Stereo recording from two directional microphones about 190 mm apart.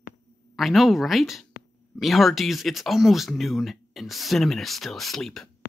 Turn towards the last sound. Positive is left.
turn(degrees=0)  # may be behind; listen again after turning